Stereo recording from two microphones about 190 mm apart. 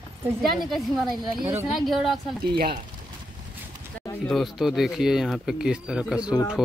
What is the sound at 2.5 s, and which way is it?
Speech, 50° right (ahead or behind).